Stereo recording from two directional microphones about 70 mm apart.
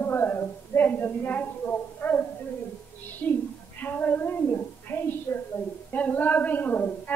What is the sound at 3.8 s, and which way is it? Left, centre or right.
Child singing, left.